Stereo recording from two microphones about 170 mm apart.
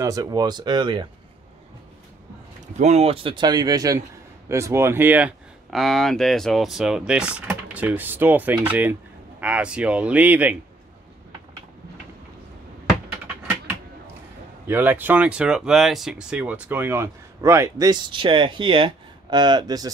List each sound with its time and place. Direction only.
0.0 s speech: 20° right (ahead or behind)
2.8 s speech: 40° right (ahead or behind); by 10.6 s 10° right (ahead or behind)
14.7 s speech: 10° right (ahead or behind)